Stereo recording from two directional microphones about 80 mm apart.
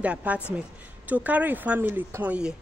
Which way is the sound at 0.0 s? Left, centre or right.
Centre.